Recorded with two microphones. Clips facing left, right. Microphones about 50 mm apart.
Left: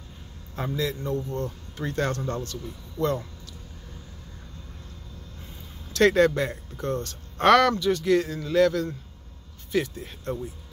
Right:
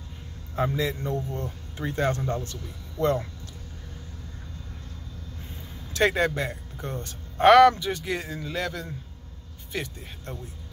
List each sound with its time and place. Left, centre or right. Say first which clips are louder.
0.6 s a man's voice: right 2 dB; right
5.9 s speech: left 4 dB; centre
6.9 s a man's voice: left 7 dB; centre